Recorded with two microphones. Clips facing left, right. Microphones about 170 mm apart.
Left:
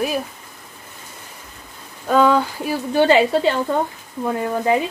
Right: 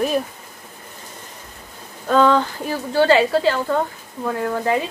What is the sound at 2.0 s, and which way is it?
Speech, 10° left (ahead or behind).